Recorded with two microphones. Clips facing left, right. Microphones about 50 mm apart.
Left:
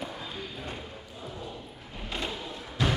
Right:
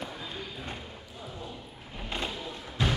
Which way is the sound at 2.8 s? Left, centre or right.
Centre.